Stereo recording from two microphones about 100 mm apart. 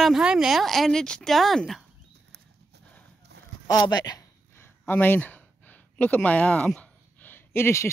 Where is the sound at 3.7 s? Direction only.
45° left (ahead or behind).